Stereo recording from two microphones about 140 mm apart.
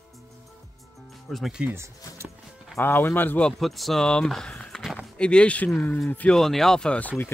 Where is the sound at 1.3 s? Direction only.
5° right (ahead or behind).